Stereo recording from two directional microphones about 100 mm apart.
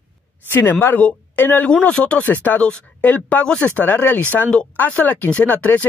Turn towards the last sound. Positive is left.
turn(degrees=15)  # may be behind; listen again after turning